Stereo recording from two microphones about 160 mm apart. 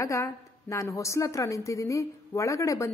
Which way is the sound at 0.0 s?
20° left (ahead or behind).